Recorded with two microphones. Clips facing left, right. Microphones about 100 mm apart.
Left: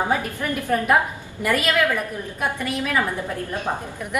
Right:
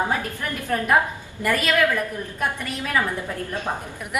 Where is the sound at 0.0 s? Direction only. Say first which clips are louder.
Left 2 dB; 15° left (ahead or behind).